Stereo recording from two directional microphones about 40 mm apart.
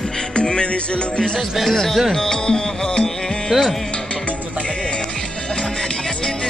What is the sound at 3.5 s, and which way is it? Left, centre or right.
Speech, centre.